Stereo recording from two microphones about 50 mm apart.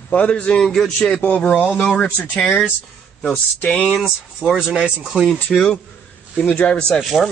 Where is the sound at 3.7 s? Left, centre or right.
Left.